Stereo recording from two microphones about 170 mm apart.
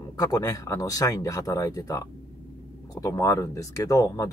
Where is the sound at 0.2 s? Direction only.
20° left (ahead or behind).